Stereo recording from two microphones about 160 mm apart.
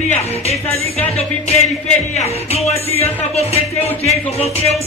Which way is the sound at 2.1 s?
40° left (ahead or behind).